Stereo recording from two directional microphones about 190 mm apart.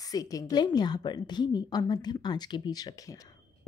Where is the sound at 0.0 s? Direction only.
20° left (ahead or behind).